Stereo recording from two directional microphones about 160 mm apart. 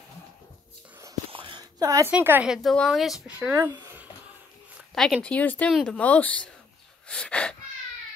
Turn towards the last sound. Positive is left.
turn(degrees=5)  # may be behind; listen again after turning